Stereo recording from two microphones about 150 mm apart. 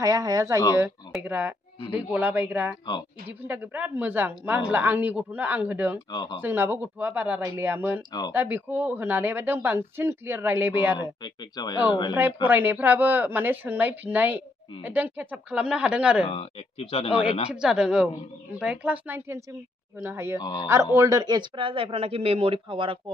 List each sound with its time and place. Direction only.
0.0 s a woman's voice: 25° right (ahead or behind)
1.2 s a woman's voice: 10° right (ahead or behind)
5.9 s speech: 30° left (ahead or behind)
6.4 s a woman's voice: 15° right (ahead or behind)
11.2 s speech: 30° left (ahead or behind)
12.1 s a woman's voice: 10° right (ahead or behind)
16.3 s speech: 40° left (ahead or behind)
17.1 s a woman's voice: 10° right (ahead or behind)
20.3 s speech: 30° left (ahead or behind)
20.6 s a man's voice: 20° right (ahead or behind); by 22.9 s 35° right (ahead or behind)